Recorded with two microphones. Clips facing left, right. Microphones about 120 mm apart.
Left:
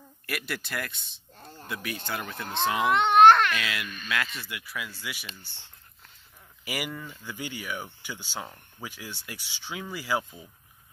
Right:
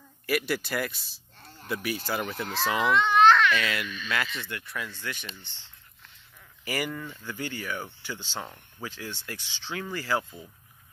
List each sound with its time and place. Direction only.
0.3 s speech: centre (ahead or behind)
2.9 s baby cry: 60° left (ahead or behind)
3.5 s speech: centre (ahead or behind)